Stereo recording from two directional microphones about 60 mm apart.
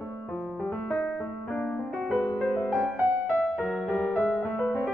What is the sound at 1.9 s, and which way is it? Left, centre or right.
Music, centre.